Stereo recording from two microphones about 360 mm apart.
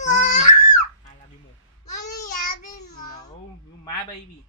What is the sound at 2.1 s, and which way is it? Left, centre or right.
Child singing, left.